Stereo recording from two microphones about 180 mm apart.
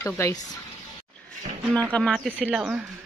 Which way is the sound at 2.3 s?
10° right (ahead or behind).